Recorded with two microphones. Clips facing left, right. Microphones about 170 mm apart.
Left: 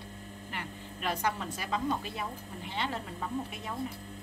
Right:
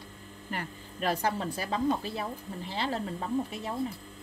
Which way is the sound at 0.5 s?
40° right (ahead or behind).